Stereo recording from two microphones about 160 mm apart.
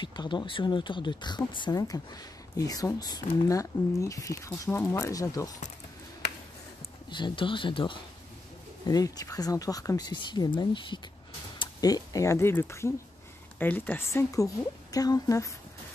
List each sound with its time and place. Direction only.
0.0 s speech: 30° left (ahead or behind)
7.1 s speech: 30° left (ahead or behind)